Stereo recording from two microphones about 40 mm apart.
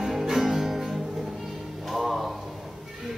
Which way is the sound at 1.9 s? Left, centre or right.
Centre.